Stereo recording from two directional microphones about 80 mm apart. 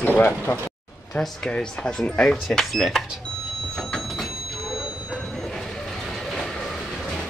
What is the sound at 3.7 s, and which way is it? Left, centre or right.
Train, centre.